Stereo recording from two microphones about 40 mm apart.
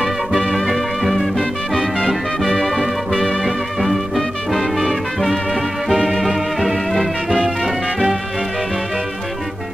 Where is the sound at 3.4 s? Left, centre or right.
Centre.